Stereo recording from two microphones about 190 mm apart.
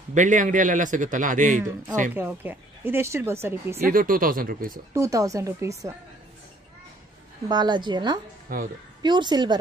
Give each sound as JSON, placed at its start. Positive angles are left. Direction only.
{"t": 0.1, "sound": "a man's voice", "side_deg": -40}
{"t": 2.1, "sound": "speech", "side_deg": -10}
{"t": 3.8, "sound": "a man's voice", "side_deg": -45}
{"t": 4.9, "sound": "speech", "side_deg": -15}
{"t": 7.4, "sound": "a woman's voice", "side_deg": -20}